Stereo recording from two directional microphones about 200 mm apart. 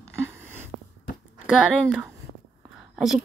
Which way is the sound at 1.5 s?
5° right (ahead or behind).